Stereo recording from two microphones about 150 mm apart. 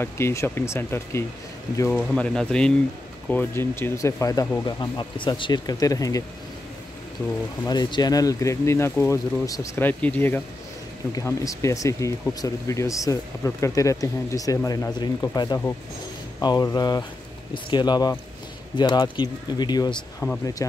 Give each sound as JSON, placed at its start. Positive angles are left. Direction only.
{"t": 0.0, "sound": "speech", "side_deg": 20}
{"t": 7.6, "sound": "speech", "side_deg": 30}
{"t": 19.9, "sound": "speech", "side_deg": 5}